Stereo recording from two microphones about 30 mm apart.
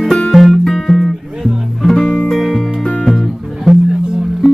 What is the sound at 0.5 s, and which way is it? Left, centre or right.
Music, centre.